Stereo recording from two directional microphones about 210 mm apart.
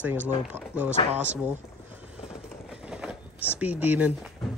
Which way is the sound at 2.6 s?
5° right (ahead or behind).